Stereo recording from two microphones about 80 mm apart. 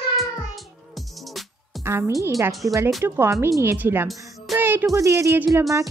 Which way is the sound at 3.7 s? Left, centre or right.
Right.